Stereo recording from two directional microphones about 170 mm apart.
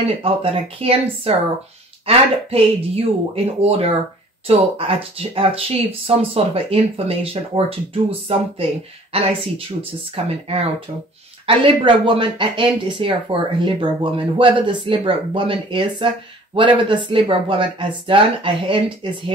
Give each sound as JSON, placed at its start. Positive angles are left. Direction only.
{"t": 0.1, "sound": "speech", "side_deg": -35}